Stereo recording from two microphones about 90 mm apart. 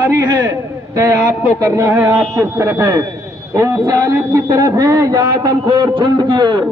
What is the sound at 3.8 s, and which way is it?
A man's voice, 50° right (ahead or behind).